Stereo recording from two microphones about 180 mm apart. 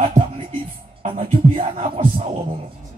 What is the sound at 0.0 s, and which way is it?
Music, 30° right (ahead or behind).